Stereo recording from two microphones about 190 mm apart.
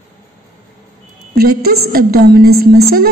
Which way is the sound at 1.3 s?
55° right (ahead or behind).